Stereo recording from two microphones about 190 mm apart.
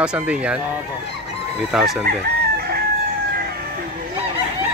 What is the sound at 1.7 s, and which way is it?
Speech, centre (ahead or behind).